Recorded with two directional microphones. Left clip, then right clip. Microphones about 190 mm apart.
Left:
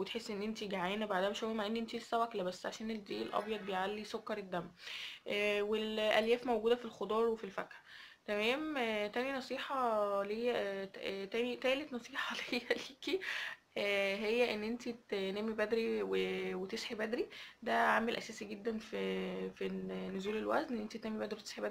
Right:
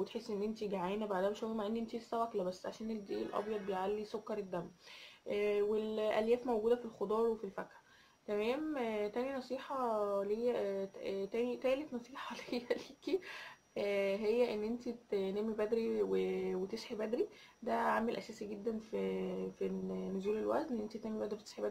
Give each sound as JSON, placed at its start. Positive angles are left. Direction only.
{"t": 0.0, "sound": "speech", "side_deg": 10}
{"t": 8.3, "sound": "speech", "side_deg": 5}
{"t": 9.7, "sound": "speech", "side_deg": 25}
{"t": 10.2, "sound": "speech", "side_deg": 5}